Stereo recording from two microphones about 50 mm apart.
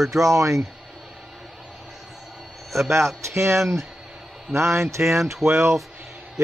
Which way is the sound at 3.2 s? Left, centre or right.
Right.